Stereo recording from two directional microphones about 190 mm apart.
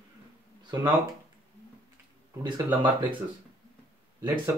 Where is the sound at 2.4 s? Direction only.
20° right (ahead or behind).